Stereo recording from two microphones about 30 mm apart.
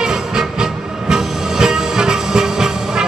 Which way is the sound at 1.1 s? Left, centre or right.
Centre.